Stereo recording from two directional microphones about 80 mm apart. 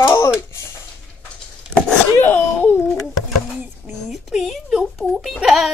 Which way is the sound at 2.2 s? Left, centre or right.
Left.